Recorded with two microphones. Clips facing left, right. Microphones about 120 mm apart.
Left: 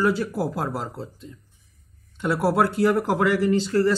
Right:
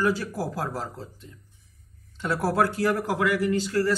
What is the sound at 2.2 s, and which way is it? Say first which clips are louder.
Speech: left 3 dB; 15° left (ahead or behind).